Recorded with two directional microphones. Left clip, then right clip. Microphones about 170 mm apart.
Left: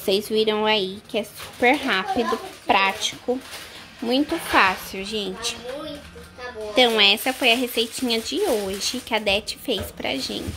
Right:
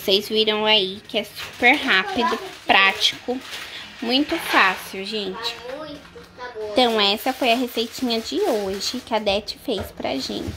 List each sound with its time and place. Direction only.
0.0 s a woman's voice: 5° left (ahead or behind)
6.7 s speech: 10° right (ahead or behind)